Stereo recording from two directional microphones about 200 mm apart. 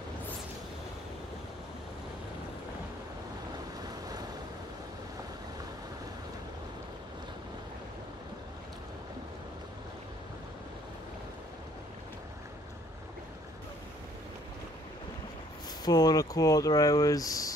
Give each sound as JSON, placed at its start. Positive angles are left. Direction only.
{"t": 15.8, "sound": "speech", "side_deg": 20}